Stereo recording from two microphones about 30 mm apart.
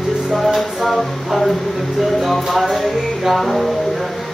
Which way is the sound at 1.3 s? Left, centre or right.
Centre.